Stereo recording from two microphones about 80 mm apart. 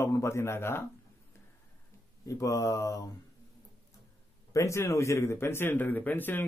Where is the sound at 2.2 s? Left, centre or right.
Left.